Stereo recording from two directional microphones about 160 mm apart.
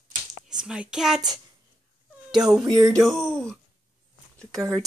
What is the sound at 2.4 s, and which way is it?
Music, 5° right (ahead or behind).